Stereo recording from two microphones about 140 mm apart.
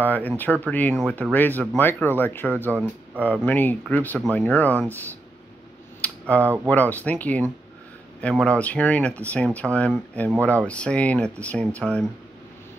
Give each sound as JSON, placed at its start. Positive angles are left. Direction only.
{"t": 0.0, "sound": "speech", "side_deg": 10}
{"t": 5.9, "sound": "a sound", "side_deg": 10}
{"t": 6.4, "sound": "speech", "side_deg": -15}
{"t": 6.7, "sound": "speech", "side_deg": 10}